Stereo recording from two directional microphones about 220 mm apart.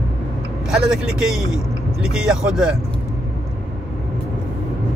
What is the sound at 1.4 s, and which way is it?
Speech, 15° left (ahead or behind).